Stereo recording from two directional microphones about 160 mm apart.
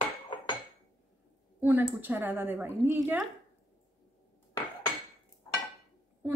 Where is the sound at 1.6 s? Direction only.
10° right (ahead or behind).